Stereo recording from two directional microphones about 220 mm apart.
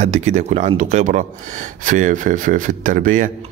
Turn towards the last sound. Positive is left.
turn(degrees=-40)  # may be behind; listen again after turning